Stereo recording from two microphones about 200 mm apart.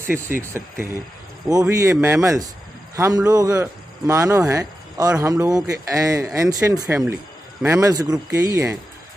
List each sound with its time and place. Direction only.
0.0 s speech: 10° right (ahead or behind)